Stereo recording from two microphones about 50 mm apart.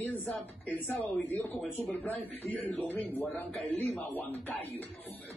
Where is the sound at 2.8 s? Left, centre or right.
Left.